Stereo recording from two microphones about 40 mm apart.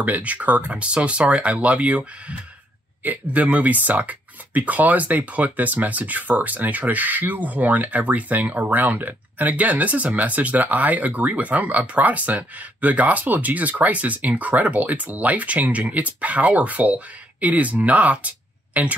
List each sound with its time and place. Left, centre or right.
0.0 s speech: right
3.0 s speech: right